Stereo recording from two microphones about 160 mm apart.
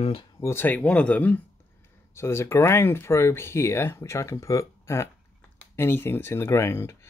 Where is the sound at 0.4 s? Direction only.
15° left (ahead or behind).